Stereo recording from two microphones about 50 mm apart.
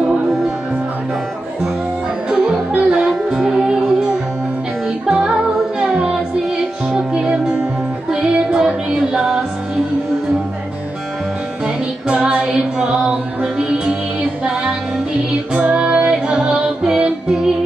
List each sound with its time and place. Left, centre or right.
2.2 s music: right
8.1 s female singing: centre
11.6 s music: centre
16.3 s music: centre